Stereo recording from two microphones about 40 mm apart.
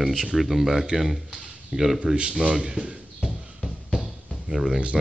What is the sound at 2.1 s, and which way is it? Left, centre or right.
Speech, right.